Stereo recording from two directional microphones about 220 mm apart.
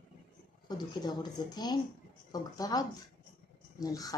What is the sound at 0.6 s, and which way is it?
Speech, 20° left (ahead or behind).